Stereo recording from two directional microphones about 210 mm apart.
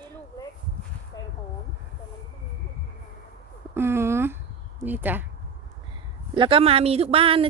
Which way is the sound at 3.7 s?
10° right (ahead or behind).